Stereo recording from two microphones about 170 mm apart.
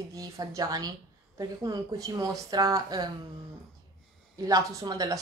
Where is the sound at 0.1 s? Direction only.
20° right (ahead or behind).